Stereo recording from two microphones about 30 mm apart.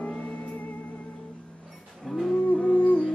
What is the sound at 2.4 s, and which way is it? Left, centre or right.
Music, left.